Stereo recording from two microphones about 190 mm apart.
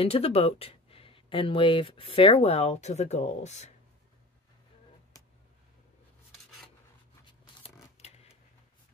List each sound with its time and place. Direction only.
0.0 s speech: 30° left (ahead or behind)
8.0 s scissors: 35° left (ahead or behind)